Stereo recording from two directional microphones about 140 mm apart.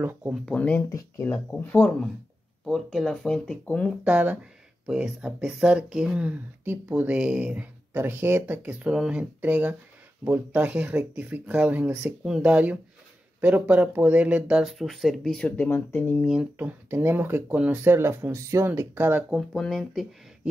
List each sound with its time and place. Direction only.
0.3 s speech: 5° left (ahead or behind)
0.8 s speech: 20° left (ahead or behind)
2.6 s speech: centre (ahead or behind)
4.0 s speech: 10° right (ahead or behind); by 16.2 s 15° left (ahead or behind)
16.2 s speech: 5° right (ahead or behind)
19.3 s speech: 5° left (ahead or behind)